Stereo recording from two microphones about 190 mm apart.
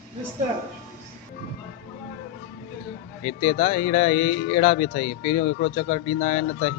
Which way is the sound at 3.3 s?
35° left (ahead or behind).